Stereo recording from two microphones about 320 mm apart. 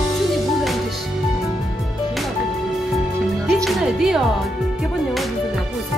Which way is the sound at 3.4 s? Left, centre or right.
Centre.